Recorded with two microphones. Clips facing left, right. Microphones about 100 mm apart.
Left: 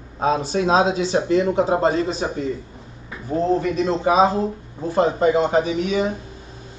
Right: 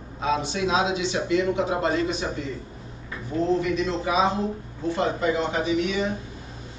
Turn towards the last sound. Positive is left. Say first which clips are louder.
# left 3 dB
turn(degrees=40)  # may be behind; listen again after turning